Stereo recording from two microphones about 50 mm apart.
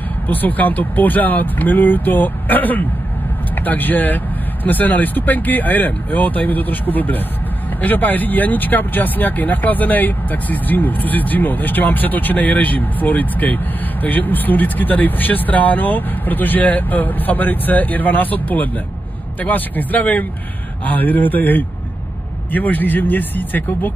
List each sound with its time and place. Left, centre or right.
0.3 s speech: left